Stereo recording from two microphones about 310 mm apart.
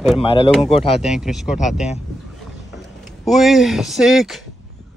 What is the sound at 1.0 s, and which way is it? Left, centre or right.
Speech, centre.